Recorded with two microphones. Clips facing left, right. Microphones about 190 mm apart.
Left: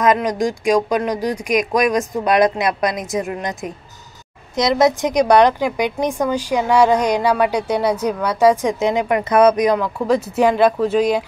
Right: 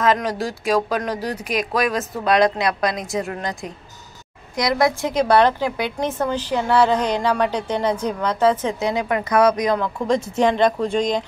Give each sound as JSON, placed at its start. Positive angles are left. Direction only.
{"t": 0.0, "sound": "a woman's voice", "side_deg": 15}
{"t": 9.8, "sound": "a woman's voice", "side_deg": 5}